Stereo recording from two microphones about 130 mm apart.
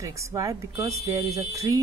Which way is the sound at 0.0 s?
25° right (ahead or behind).